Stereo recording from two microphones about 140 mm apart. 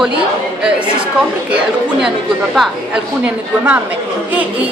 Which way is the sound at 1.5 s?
5° right (ahead or behind).